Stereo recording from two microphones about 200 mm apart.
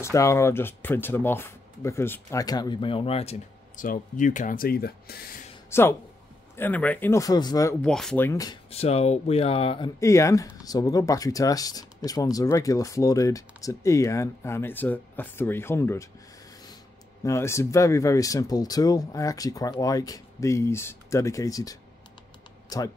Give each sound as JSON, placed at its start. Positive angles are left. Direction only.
{"t": 0.0, "sound": "speech", "side_deg": 15}
{"t": 5.7, "sound": "speech", "side_deg": 10}
{"t": 7.8, "sound": "speech", "side_deg": 5}
{"t": 8.3, "sound": "speech", "side_deg": 20}
{"t": 8.6, "sound": "speech", "side_deg": 30}
{"t": 9.9, "sound": "speech", "side_deg": 15}
{"t": 17.2, "sound": "speech", "side_deg": 15}